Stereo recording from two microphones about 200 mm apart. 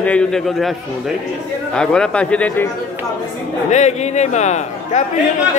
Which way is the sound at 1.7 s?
5° left (ahead or behind).